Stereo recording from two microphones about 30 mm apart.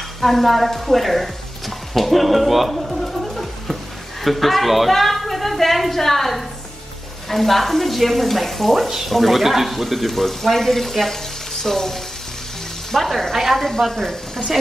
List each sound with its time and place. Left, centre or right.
0.2 s speech: centre
2.0 s a sound: centre
4.2 s a woman's voice: centre
13.7 s speech: centre